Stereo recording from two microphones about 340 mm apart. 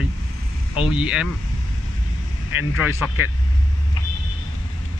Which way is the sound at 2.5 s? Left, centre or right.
Left.